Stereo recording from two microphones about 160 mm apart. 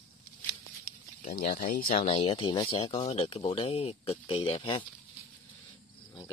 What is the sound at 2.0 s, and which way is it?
Speech, 35° left (ahead or behind).